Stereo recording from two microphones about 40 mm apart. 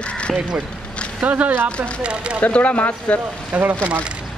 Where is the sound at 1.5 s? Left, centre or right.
Right.